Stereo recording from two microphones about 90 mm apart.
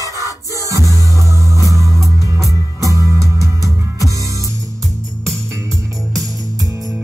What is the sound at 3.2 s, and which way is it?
Music, 35° right (ahead or behind).